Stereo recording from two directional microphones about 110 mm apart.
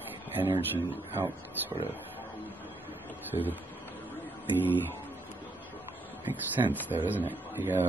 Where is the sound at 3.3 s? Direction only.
40° left (ahead or behind).